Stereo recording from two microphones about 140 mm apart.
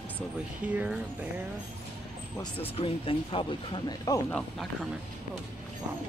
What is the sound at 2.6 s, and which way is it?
Speech, 40° left (ahead or behind).